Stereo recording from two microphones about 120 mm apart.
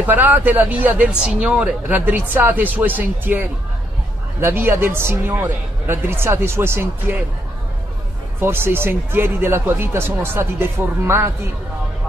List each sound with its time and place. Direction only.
0.0 s speech: 15° right (ahead or behind)
8.4 s speech: 20° right (ahead or behind)